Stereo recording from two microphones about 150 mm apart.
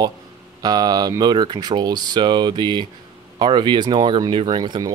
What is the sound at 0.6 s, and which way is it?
Speech, 25° right (ahead or behind).